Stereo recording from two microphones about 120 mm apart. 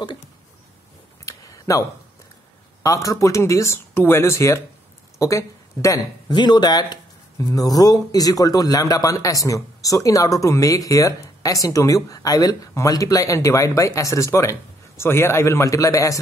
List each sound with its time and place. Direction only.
1.2 s a sound: 30° left (ahead or behind)
2.8 s a woman's voice: 25° left (ahead or behind)
6.3 s speech: 40° left (ahead or behind)